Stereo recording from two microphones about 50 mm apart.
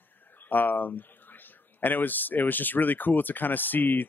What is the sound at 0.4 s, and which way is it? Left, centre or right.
Speech, left.